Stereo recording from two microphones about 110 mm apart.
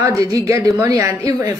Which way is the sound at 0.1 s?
30° right (ahead or behind).